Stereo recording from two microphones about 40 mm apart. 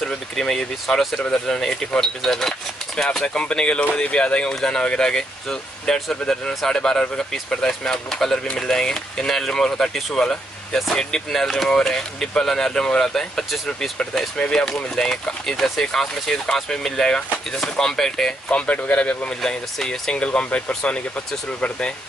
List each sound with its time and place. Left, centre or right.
0.0 s speech: centre
5.9 s speech: centre
6.7 s speech: centre
18.9 s speech: left
19.4 s speech: centre